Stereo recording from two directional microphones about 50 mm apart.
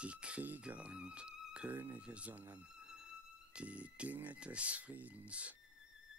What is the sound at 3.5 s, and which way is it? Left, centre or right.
Speech, right.